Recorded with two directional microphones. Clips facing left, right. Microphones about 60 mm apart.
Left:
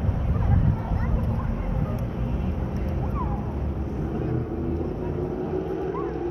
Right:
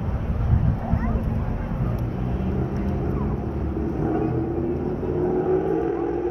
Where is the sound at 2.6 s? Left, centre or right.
Right.